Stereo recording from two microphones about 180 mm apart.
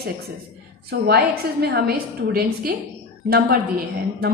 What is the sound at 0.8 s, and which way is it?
A woman's voice, 65° right (ahead or behind).